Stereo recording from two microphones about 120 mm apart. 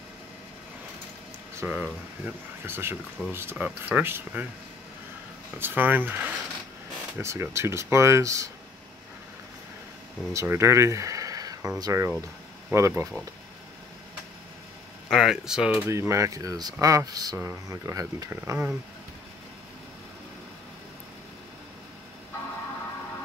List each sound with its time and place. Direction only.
1.6 s speech: 15° right (ahead or behind)
5.6 s speech: 15° right (ahead or behind)
10.3 s speech: 20° right (ahead or behind)
15.0 s speech: centre (ahead or behind)
15.9 s speech: 25° right (ahead or behind)
17.4 s speech: 20° right (ahead or behind)